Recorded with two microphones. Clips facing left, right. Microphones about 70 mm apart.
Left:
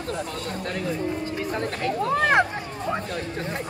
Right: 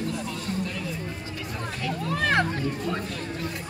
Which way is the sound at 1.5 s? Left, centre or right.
Left.